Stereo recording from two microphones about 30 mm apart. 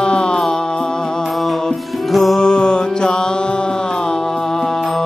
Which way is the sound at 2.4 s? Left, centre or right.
Left.